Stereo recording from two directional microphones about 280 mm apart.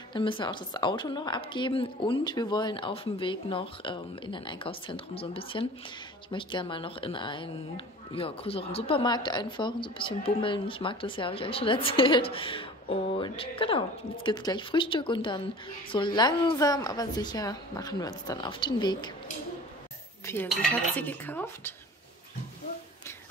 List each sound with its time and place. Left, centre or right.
0.1 s speech: centre
20.2 s speech: centre